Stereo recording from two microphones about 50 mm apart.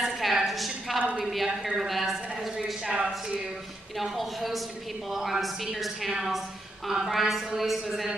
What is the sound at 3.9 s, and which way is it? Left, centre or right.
A woman's voice, centre.